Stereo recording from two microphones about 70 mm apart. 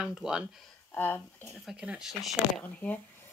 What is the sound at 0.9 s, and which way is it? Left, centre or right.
Speech, left.